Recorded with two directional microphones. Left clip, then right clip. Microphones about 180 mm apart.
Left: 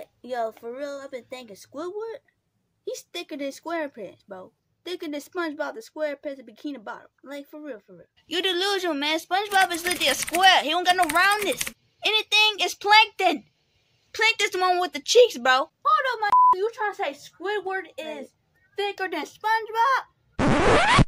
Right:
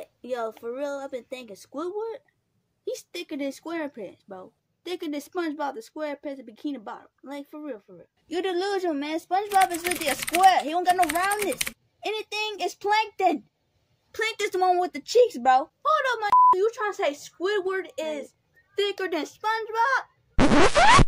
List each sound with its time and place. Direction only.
0.0 s speech: 5° right (ahead or behind)
14.1 s speech: 20° right (ahead or behind)
15.8 s a sound: 10° right (ahead or behind)
16.3 s a sound: centre (ahead or behind)
16.5 s a woman's voice: 15° right (ahead or behind)
20.3 s scratch: 5° left (ahead or behind)